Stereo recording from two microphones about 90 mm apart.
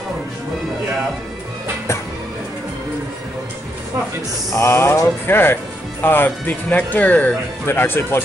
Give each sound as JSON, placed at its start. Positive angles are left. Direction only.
{"t": 4.5, "sound": "speech", "side_deg": 30}